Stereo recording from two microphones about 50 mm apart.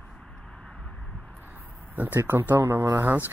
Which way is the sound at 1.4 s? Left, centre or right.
Right.